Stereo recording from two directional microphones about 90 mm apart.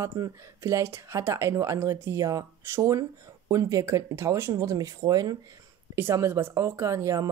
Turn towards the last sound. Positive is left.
turn(degrees=-35)  # may be behind; listen again after turning